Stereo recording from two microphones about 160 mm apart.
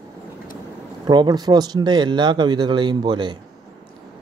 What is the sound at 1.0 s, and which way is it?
Speech, 25° right (ahead or behind).